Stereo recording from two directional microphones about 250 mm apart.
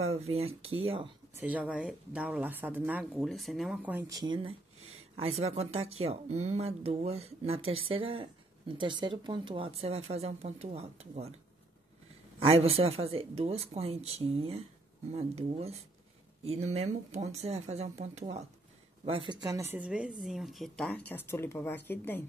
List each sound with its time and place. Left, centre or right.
0.0 s speech: right
1.4 s speech: centre; by 11.3 s right
12.4 s speech: right; by 22.2 s centre